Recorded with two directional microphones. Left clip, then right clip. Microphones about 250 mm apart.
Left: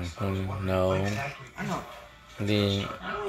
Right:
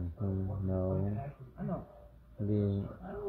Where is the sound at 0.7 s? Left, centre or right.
Left.